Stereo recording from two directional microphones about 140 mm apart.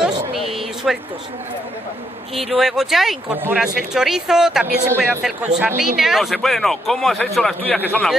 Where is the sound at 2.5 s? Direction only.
Centre (ahead or behind).